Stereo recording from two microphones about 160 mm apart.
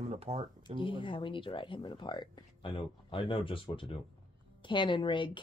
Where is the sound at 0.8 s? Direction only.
30° left (ahead or behind).